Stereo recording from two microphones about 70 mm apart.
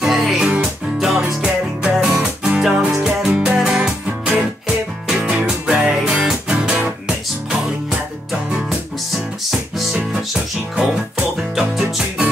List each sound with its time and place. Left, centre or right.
0.0 s music: centre
8.3 s music: centre